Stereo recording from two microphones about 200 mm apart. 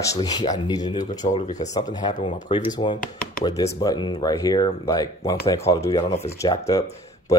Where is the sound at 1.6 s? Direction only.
15° left (ahead or behind).